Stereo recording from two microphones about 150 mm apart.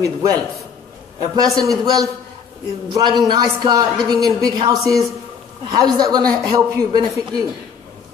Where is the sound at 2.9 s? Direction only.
25° right (ahead or behind).